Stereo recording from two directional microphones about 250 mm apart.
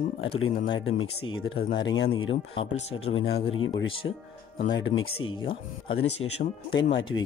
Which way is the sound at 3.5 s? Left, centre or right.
Left.